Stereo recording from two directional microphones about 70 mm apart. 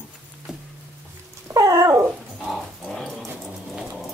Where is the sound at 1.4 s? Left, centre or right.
Right.